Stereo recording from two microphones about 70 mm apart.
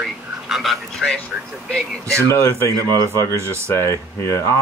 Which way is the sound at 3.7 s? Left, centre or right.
Left.